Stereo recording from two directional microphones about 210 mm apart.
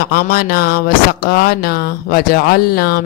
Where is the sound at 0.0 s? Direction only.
45° left (ahead or behind).